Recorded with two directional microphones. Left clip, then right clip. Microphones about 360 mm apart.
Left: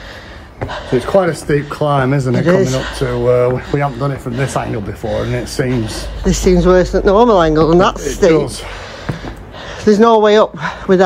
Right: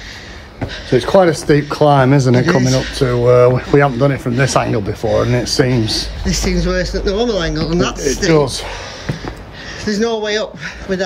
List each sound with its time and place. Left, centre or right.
0.8 s speech: right
2.5 s speech: centre
2.9 s speech: right
6.2 s speech: centre
9.8 s speech: centre